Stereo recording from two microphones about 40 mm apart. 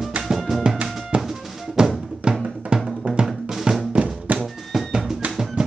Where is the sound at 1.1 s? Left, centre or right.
Right.